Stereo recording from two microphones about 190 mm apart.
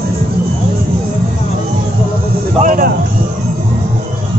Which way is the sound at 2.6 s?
45° right (ahead or behind).